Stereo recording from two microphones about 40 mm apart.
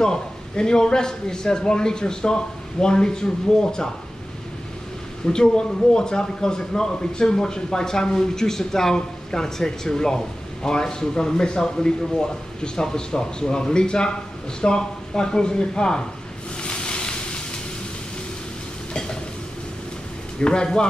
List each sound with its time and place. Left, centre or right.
0.0 s a man's voice: centre
5.2 s a man's voice: centre
16.6 s boat: left
20.3 s a man's voice: left